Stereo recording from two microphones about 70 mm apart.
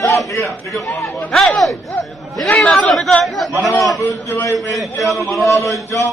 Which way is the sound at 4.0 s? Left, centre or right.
Left.